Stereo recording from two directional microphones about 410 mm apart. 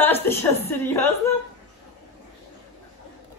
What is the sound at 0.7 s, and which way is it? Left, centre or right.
Speech, centre.